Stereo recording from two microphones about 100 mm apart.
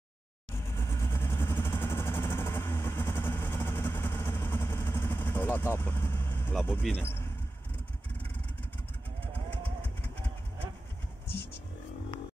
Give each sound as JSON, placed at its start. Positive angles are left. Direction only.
{"t": 0.6, "sound": "vehicle", "side_deg": 25}
{"t": 6.5, "sound": "speech", "side_deg": 15}